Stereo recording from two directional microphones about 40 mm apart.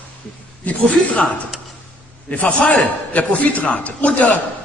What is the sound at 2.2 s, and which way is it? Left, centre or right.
Speech, left.